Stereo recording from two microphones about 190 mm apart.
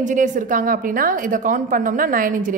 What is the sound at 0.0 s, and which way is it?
A woman's voice, 40° right (ahead or behind).